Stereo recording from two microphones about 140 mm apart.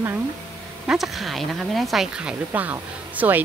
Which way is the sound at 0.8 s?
Centre (ahead or behind).